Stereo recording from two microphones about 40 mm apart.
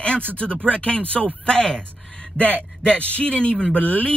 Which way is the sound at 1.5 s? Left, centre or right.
Left.